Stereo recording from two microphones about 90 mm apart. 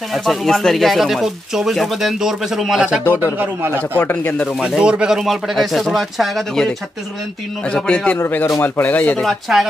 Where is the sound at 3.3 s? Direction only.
25° right (ahead or behind).